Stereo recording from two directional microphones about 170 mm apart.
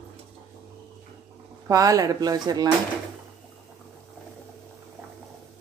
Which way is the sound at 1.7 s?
20° right (ahead or behind).